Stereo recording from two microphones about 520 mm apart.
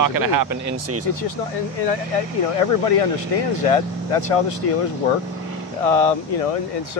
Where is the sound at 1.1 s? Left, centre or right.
Left.